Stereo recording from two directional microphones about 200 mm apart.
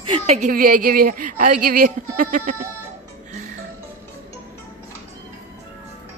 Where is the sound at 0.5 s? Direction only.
45° right (ahead or behind).